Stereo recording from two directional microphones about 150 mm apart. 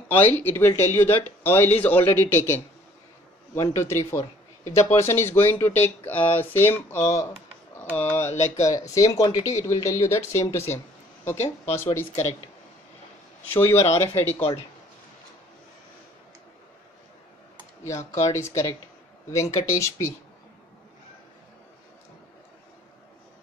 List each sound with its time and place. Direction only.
0.1 s speech: 15° left (ahead or behind)
13.5 s speech: 15° left (ahead or behind)
17.8 s speech: 20° left (ahead or behind)